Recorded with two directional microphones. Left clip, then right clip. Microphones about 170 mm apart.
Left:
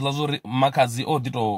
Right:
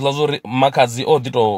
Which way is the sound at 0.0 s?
15° left (ahead or behind).